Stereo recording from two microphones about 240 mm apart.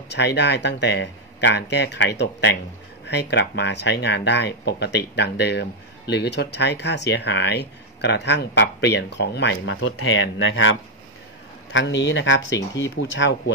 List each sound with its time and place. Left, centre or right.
0.1 s speech: left
9.8 s speech: left